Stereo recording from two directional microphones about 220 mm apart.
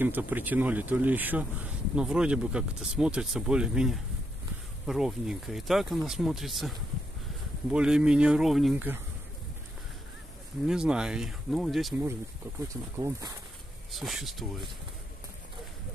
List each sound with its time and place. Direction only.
0.0 s speech: 10° right (ahead or behind)
10.7 s speech: 5° right (ahead or behind)
12.0 s speech: 10° right (ahead or behind)
13.9 s speech: centre (ahead or behind)